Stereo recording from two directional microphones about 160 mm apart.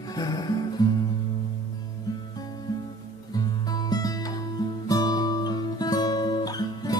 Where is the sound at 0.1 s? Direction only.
25° left (ahead or behind).